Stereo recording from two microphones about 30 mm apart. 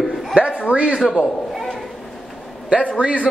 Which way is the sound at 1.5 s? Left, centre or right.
Centre.